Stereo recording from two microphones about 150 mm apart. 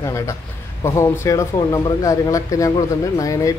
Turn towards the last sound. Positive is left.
turn(degrees=20)  # may be behind; listen again after turning